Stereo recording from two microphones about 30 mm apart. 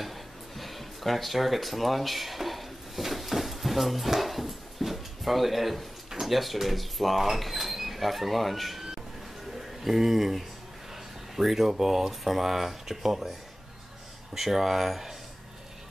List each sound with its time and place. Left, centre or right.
0.0 s a sound: centre
11.3 s speech: centre
14.3 s speech: centre